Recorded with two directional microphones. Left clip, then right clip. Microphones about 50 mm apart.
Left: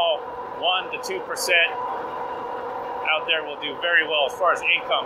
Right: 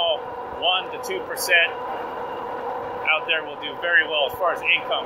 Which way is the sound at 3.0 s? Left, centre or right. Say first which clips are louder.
Right 1 dB; centre.